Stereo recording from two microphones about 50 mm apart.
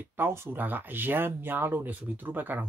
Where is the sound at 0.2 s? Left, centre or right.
Right.